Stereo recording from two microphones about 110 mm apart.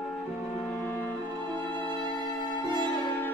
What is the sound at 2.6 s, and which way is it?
Music, 45° right (ahead or behind).